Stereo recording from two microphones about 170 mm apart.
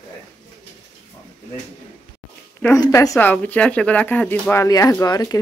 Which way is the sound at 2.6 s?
20° left (ahead or behind).